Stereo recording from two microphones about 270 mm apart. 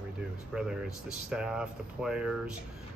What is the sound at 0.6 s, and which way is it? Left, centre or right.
Speech, centre.